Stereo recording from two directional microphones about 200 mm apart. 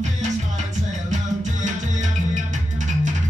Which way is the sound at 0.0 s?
35° right (ahead or behind).